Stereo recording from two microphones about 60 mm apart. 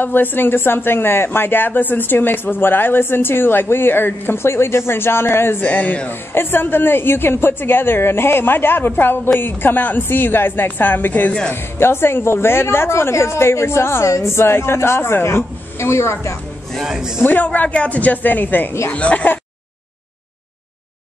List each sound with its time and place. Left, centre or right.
0.0 s speech: left
5.7 s a woman's voice: left
11.5 s a woman's voice: left
16.8 s speech: centre
17.2 s a woman's voice: left
18.9 s a woman's voice: left